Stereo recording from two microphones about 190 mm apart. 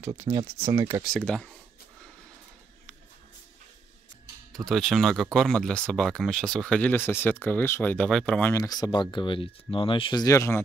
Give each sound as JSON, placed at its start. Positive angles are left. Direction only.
{"t": 0.0, "sound": "speech", "side_deg": -15}
{"t": 1.0, "sound": "speech", "side_deg": 5}
{"t": 4.5, "sound": "speech", "side_deg": 0}